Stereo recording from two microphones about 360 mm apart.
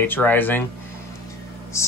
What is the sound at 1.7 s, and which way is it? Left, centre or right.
Speech, centre.